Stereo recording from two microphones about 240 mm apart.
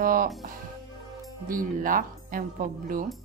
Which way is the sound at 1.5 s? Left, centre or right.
Right.